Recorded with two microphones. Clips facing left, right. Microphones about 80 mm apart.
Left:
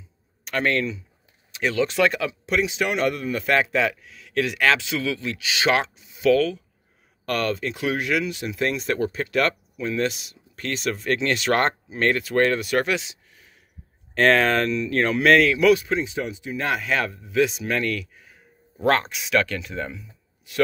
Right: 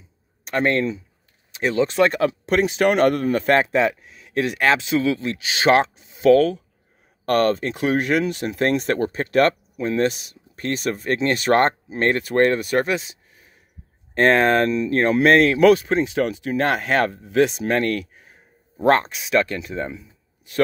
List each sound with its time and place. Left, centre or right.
0.6 s speech: right
12.2 s speech: right